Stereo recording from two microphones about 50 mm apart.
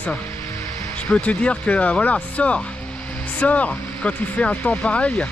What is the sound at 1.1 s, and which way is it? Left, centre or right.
Speech, left.